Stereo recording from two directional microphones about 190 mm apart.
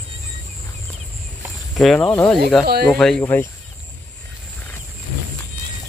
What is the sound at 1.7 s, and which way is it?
Speech, centre (ahead or behind).